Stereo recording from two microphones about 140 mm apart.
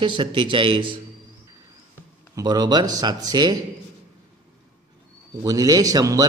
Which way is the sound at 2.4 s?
30° right (ahead or behind).